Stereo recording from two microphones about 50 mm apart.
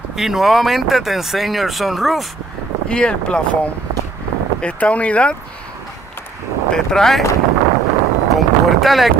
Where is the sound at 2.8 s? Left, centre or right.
Centre.